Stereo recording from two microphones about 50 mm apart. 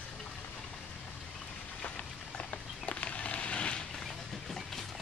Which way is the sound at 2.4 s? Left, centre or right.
Left.